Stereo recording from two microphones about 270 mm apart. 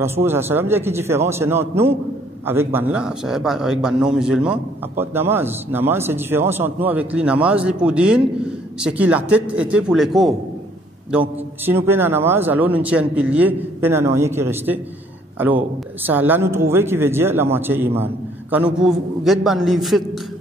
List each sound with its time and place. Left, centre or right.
0.0 s a man's voice: centre